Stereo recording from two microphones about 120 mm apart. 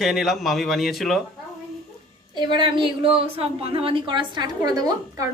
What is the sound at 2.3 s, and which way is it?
A woman's voice, 40° right (ahead or behind).